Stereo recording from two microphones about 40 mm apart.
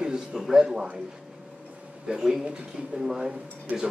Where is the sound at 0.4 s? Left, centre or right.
Centre.